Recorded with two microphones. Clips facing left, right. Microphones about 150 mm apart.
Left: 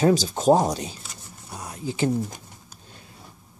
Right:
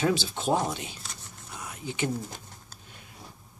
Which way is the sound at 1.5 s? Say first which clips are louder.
Left 6 dB; 35° left (ahead or behind).